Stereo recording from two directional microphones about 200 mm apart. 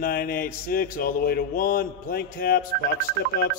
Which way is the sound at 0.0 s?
45° left (ahead or behind).